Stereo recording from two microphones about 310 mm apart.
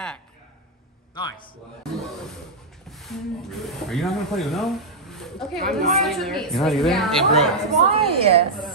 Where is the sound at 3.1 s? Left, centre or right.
Centre.